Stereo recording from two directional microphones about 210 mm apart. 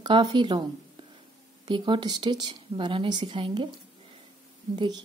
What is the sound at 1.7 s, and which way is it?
Speech, 20° right (ahead or behind).